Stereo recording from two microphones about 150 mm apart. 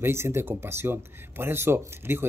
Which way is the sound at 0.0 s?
15° right (ahead or behind).